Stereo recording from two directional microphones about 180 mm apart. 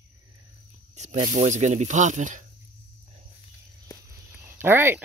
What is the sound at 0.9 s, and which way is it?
Speech, 40° right (ahead or behind).